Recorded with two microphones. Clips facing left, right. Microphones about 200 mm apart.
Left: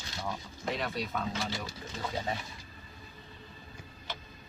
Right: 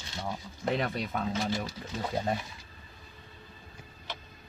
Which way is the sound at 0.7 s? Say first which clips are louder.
Right 3 dB; 55° right (ahead or behind).